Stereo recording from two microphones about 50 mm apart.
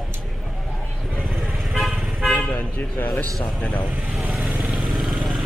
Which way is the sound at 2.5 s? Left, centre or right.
Left.